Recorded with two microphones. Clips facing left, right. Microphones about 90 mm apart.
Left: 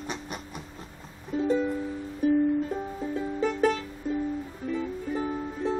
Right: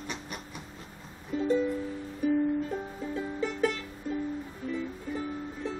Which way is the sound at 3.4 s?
35° left (ahead or behind).